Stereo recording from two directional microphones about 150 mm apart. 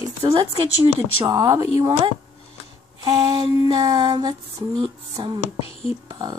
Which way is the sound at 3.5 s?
25° right (ahead or behind).